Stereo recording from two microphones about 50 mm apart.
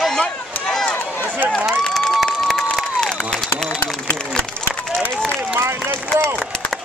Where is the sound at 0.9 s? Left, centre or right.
Left.